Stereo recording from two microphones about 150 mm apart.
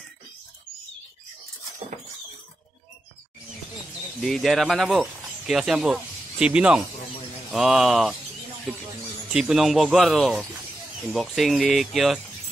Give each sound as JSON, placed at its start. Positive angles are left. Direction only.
{"t": 4.2, "sound": "speech", "side_deg": 0}
{"t": 9.3, "sound": "speech", "side_deg": -5}